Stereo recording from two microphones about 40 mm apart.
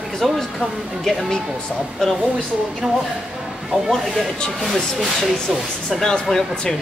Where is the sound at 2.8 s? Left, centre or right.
Centre.